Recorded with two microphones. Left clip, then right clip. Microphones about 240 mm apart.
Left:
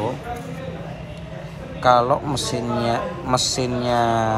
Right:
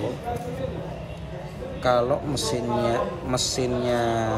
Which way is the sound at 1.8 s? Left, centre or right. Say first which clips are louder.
Left 6 dB; centre.